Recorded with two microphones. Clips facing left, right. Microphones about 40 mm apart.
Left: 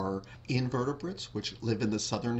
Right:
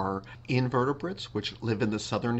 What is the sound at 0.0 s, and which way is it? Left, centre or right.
Speech, right.